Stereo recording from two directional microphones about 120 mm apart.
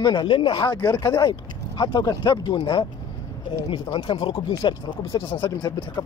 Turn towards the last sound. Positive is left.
turn(degrees=40)  # may be behind; listen again after turning